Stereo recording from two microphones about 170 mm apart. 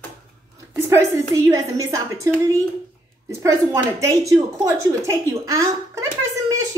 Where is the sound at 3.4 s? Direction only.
15° right (ahead or behind).